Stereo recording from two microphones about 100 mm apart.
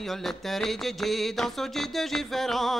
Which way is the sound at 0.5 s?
Centre (ahead or behind).